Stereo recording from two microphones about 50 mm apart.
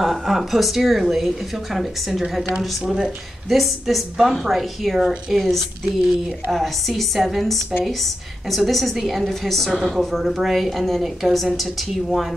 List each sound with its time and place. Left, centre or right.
0.0 s a woman's voice: centre
2.8 s speech: centre
3.4 s a woman's voice: centre